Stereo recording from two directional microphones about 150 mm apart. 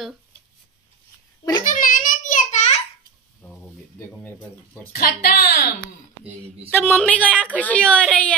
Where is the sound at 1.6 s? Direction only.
60° left (ahead or behind).